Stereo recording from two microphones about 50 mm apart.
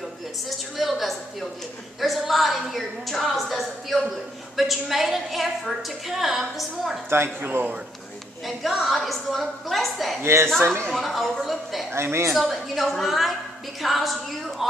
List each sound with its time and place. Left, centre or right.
0.7 s a sound: centre
2.0 s a woman's voice: centre
7.3 s a man's voice: right
8.5 s a woman's voice: centre
10.2 s a woman's voice: right
10.9 s a woman's voice: centre
11.9 s a woman's voice: right
12.4 s a woman's voice: centre